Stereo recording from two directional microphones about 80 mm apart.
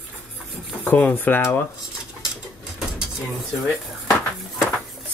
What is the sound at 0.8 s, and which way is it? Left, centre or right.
Dishes, left.